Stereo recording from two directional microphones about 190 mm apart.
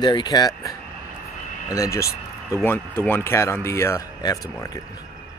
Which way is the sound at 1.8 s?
15° left (ahead or behind).